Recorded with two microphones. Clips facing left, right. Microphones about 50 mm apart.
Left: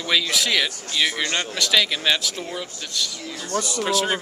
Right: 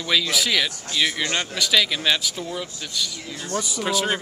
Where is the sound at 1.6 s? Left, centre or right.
Centre.